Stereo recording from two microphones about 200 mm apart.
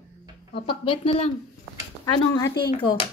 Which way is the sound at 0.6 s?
25° left (ahead or behind).